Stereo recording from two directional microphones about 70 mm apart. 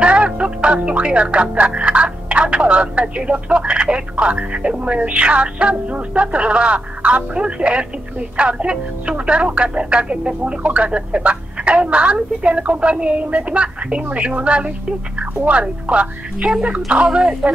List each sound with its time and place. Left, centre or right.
0.0 s music: centre